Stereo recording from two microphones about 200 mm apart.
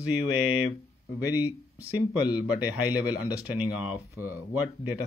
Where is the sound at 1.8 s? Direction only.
20° left (ahead or behind).